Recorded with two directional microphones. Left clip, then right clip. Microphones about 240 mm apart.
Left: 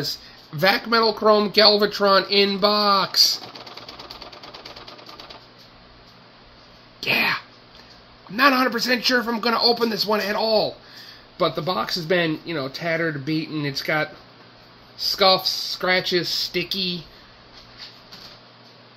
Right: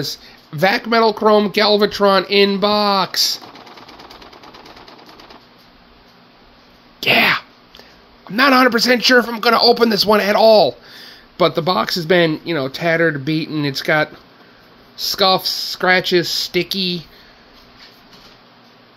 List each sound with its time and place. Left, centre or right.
0.6 s speech: right
7.0 s a sound: right
8.3 s speech: right